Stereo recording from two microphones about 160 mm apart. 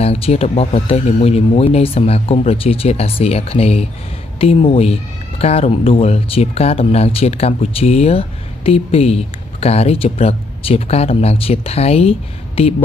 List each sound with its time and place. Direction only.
0.0 s speech: 40° left (ahead or behind)